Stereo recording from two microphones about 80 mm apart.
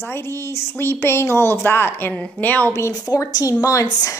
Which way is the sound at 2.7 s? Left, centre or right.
Left.